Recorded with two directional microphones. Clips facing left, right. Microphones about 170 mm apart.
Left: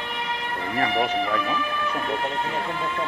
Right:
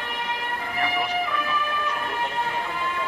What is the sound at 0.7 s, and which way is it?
Speech, 40° left (ahead or behind).